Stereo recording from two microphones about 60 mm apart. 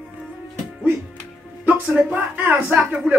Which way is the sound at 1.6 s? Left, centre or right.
Right.